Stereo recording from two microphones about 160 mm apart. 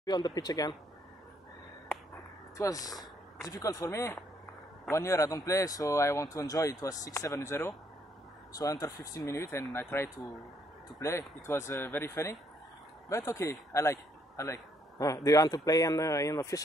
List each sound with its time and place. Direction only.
0.0 s a man's voice: 25° left (ahead or behind)
2.5 s a man's voice: 20° left (ahead or behind)